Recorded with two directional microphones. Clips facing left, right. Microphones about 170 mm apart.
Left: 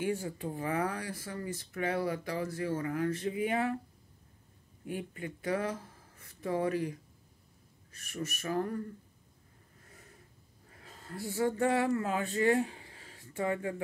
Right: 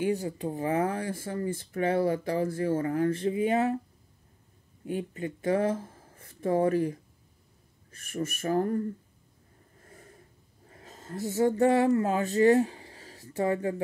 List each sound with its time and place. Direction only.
0.4 s speech: 20° right (ahead or behind)
4.8 s speech: 25° right (ahead or behind)
6.2 s speech: 50° right (ahead or behind)
10.7 s speech: 40° right (ahead or behind)